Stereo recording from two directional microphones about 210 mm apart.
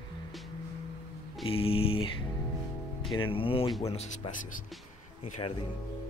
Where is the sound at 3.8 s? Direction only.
30° left (ahead or behind).